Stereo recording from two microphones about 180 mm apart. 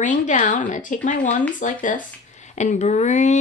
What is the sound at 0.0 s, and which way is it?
Speech, 45° left (ahead or behind).